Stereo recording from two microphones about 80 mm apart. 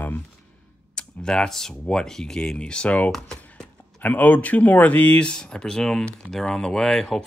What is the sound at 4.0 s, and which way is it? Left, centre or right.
Speech, centre.